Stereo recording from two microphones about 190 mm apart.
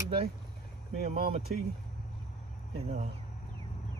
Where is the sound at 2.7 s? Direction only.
35° right (ahead or behind).